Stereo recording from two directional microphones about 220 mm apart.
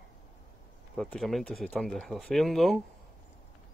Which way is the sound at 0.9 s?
Centre (ahead or behind).